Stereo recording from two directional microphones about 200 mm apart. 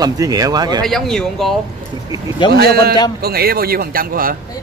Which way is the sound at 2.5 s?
50° right (ahead or behind).